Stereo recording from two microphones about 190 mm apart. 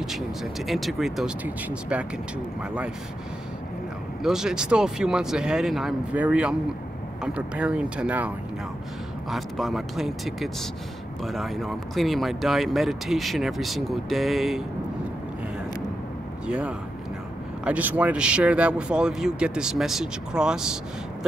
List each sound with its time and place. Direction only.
0.0 s speech: centre (ahead or behind)
4.2 s speech: 5° right (ahead or behind)
9.3 s speech: centre (ahead or behind)
16.4 s speech: 5° right (ahead or behind)